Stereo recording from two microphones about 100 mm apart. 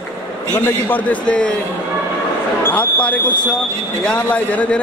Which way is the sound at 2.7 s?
15° left (ahead or behind).